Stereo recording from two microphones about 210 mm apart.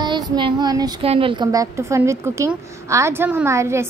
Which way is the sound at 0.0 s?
20° right (ahead or behind).